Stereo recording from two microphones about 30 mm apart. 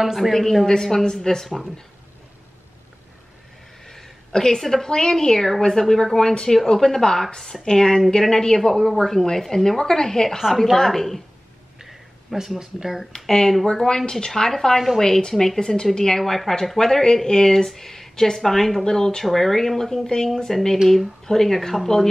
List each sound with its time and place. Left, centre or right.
0.0 s speech: centre
0.3 s speech: centre
3.8 s a sound: centre
4.3 s a woman's voice: left
4.6 s speech: centre
4.8 s a woman's voice: left; by 11.2 s centre
11.8 s a sound: centre
13.1 s a woman's voice: left
16.2 s speech: centre
17.0 s a woman's voice: left
17.6 s speech: centre